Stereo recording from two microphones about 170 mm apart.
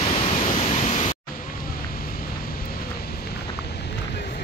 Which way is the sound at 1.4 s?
55° left (ahead or behind).